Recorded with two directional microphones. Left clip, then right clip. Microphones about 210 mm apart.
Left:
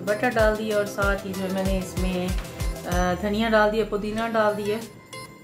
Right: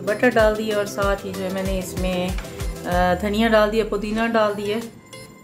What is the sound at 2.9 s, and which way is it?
Speech, 40° right (ahead or behind).